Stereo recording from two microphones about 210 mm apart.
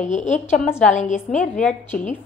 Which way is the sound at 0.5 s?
5° left (ahead or behind).